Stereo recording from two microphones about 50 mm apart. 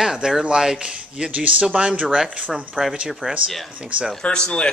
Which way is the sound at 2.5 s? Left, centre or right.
Centre.